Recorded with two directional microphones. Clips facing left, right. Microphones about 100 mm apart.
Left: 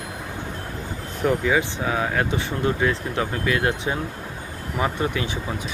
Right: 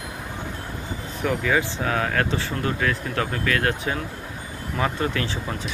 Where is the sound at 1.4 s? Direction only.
15° left (ahead or behind).